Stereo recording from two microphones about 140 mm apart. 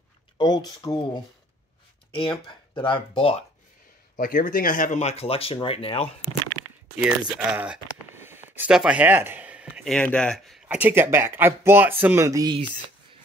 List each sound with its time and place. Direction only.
0.4 s speech: 30° left (ahead or behind)
4.2 s speech: 85° left; by 6.0 s 45° left (ahead or behind)
7.0 s speech: 10° right (ahead or behind)
9.8 s speech: 5° left (ahead or behind)
10.7 s speech: 15° right (ahead or behind)